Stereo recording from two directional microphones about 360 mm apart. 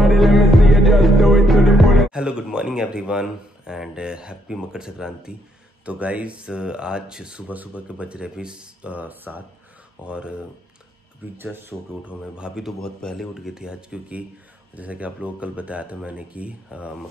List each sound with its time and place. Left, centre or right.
0.0 s music: centre
5.9 s speech: centre